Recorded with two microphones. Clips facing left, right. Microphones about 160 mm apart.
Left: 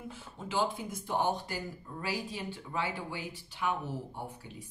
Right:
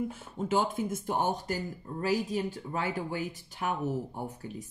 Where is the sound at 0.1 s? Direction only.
50° right (ahead or behind).